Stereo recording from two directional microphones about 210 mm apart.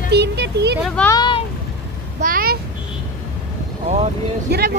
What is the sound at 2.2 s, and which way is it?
Vehicle, 45° right (ahead or behind).